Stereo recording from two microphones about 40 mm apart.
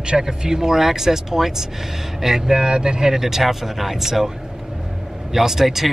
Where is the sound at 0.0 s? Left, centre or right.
Centre.